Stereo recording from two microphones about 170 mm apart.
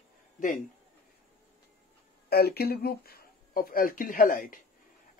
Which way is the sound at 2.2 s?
65° left (ahead or behind).